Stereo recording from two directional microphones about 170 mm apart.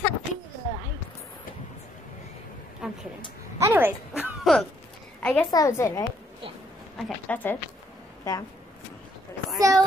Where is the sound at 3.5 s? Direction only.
15° right (ahead or behind).